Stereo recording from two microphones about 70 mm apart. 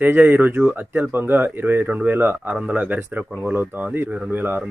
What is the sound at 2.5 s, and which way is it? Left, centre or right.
Speech, centre.